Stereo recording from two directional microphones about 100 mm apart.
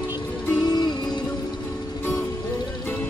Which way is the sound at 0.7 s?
45° left (ahead or behind).